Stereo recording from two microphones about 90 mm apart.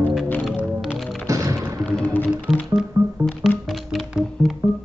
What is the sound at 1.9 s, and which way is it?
Music, 15° left (ahead or behind).